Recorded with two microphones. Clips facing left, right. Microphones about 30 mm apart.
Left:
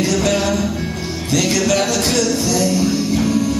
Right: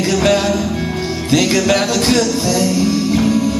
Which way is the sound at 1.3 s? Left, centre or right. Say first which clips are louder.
Right 3 dB; right.